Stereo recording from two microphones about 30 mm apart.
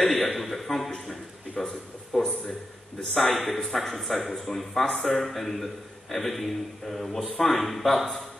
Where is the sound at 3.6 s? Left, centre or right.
Centre.